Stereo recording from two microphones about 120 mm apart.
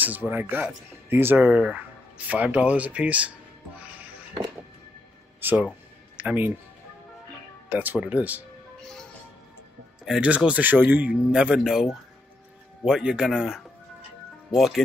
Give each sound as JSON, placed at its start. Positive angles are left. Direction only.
{"t": 0.0, "sound": "speech", "side_deg": -15}
{"t": 5.4, "sound": "speech", "side_deg": -15}
{"t": 7.7, "sound": "speech", "side_deg": -15}
{"t": 8.7, "sound": "music", "side_deg": 5}
{"t": 10.0, "sound": "a man's voice", "side_deg": -5}